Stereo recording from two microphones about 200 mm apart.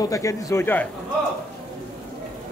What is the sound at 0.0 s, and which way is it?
Speech, 15° left (ahead or behind).